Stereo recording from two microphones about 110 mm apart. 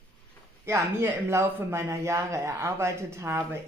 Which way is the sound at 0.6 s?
25° right (ahead or behind).